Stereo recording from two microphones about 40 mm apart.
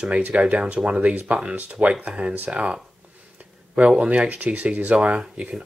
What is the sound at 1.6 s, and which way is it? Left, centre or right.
Speech, right.